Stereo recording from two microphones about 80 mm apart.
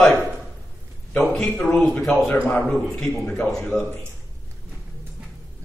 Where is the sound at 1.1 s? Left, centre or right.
Centre.